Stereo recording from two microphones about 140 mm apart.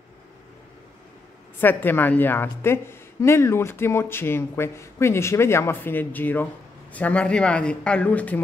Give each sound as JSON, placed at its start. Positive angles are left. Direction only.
{"t": 1.6, "sound": "a woman's voice", "side_deg": 15}